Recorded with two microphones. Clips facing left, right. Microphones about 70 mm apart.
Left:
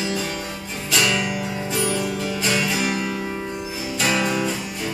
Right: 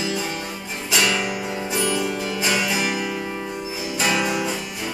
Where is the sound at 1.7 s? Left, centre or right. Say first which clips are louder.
Even; centre.